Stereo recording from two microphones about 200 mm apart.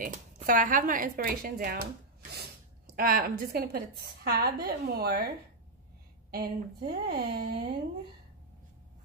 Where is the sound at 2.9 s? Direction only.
45° right (ahead or behind).